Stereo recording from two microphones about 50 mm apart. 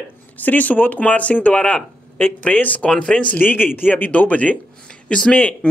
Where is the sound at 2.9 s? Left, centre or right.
Centre.